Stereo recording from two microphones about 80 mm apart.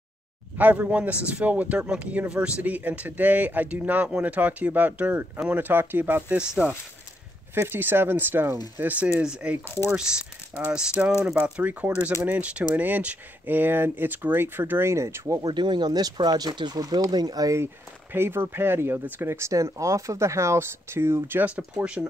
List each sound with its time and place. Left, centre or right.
0.6 s speech: centre
7.5 s speech: right
15.4 s speech: right
18.1 s speech: right